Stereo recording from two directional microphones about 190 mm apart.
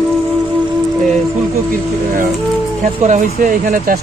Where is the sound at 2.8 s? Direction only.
40° right (ahead or behind).